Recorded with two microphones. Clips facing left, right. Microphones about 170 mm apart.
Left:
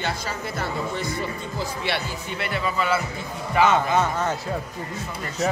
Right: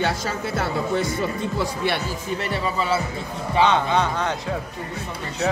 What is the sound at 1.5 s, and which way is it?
Speech, 70° right (ahead or behind).